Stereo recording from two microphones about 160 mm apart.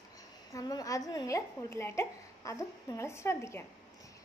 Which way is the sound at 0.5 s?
25° left (ahead or behind).